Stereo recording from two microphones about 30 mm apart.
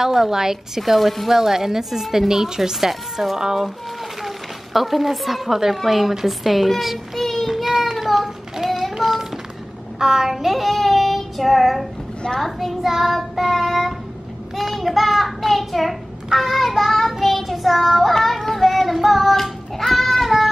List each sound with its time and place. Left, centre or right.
0.0 s speech: centre
0.8 s a child's voice: centre
1.3 s speech: centre
3.3 s speech: right
4.7 s a child's voice: centre
7.4 s child singing: centre
10.3 s child singing: centre